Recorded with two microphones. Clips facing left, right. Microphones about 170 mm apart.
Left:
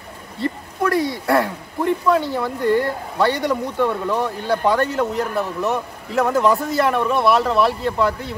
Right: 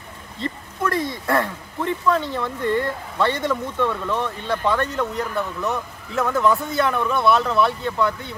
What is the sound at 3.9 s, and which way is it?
A man's voice, 15° left (ahead or behind).